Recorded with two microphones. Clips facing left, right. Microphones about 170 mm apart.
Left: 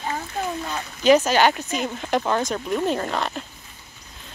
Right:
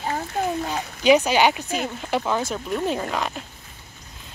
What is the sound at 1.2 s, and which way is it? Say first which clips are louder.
Speech: even; 10° right (ahead or behind).